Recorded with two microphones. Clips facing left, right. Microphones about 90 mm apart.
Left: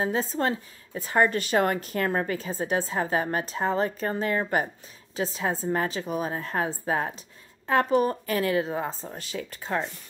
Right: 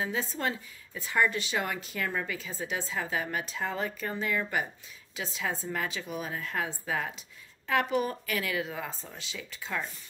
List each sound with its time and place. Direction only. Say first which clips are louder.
0.0 s a woman's voice: left 6 dB; 40° left (ahead or behind)